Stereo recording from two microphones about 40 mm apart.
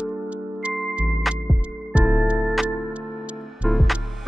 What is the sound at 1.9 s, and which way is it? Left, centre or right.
Music, right.